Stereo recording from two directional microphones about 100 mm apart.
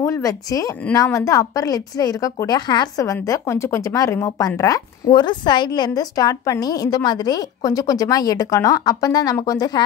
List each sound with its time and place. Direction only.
0.0 s a woman's voice: 35° left (ahead or behind)
3.0 s a woman's voice: 30° left (ahead or behind)
5.1 s a woman's voice: 50° left (ahead or behind)